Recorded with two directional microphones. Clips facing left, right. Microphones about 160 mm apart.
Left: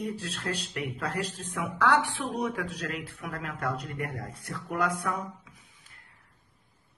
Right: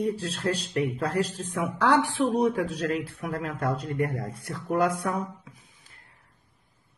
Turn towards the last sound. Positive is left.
turn(degrees=-30)  # may be behind; listen again after turning